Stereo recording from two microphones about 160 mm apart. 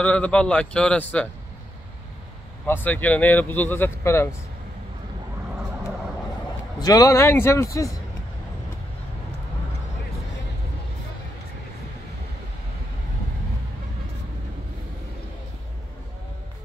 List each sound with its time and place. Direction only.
0.0 s speech: 10° left (ahead or behind)
2.6 s speech: 10° left (ahead or behind)
6.8 s a man's voice: 20° left (ahead or behind)